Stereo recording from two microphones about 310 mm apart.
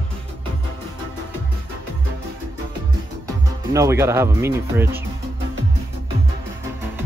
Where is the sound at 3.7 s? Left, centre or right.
Centre.